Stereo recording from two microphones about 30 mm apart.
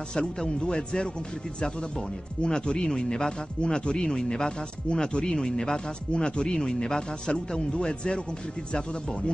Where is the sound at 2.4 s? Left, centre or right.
Left.